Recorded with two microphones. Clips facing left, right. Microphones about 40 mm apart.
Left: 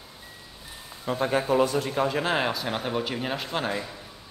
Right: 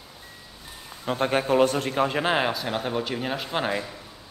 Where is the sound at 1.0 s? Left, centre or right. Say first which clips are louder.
Right 1 dB; right.